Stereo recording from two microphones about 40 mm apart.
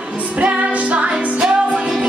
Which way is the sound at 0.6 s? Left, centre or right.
Right.